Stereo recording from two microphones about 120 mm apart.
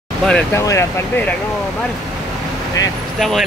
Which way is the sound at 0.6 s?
25° left (ahead or behind).